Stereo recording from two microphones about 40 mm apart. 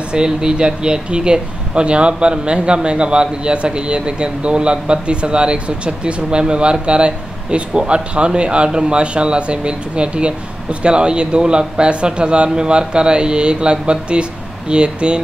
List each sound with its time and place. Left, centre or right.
0.1 s speech: right